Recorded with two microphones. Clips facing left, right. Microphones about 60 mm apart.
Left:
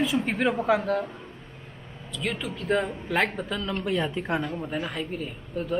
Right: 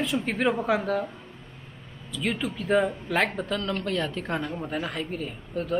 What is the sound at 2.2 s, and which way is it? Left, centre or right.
Speech, centre.